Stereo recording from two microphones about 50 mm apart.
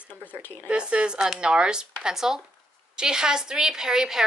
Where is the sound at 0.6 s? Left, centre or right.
Centre.